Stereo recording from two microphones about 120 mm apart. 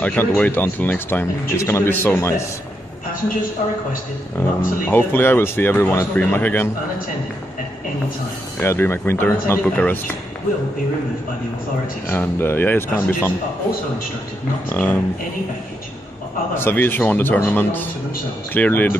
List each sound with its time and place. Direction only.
0.0 s speech: 15° left (ahead or behind)
4.4 s speech: 15° left (ahead or behind)
8.5 s speech: 20° left (ahead or behind)
12.1 s speech: 20° left (ahead or behind)
14.7 s speech: 15° left (ahead or behind)
16.5 s speech: 20° left (ahead or behind)